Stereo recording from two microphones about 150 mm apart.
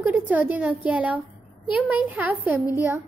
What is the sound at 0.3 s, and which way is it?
A woman's voice, 10° right (ahead or behind).